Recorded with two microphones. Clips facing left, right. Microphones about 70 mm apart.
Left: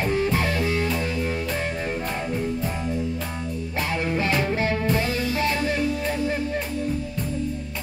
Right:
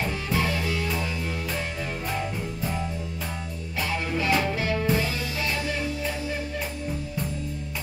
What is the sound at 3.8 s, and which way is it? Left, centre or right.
Music, left.